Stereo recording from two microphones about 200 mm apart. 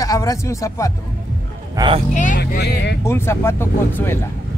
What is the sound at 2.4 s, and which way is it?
Speech, 55° left (ahead or behind).